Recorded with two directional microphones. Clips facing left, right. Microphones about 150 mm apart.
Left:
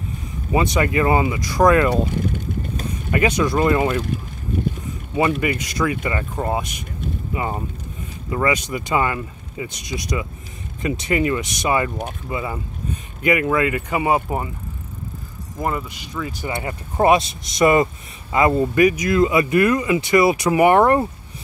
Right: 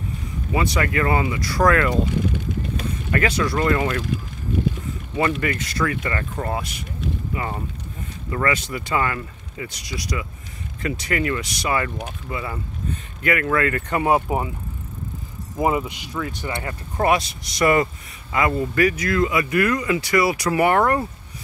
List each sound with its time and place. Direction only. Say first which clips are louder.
0.5 s speech: left 3 dB; 25° left (ahead or behind)
3.1 s speech: left 3 dB; 15° left (ahead or behind)
5.1 s speech: left 3 dB; 15° left (ahead or behind); by 14.5 s centre (ahead or behind)
15.6 s speech: right 4 dB; 15° right (ahead or behind)
16.1 s speech: even; 5° left (ahead or behind)
16.6 s speech: left 4 dB; 20° left (ahead or behind)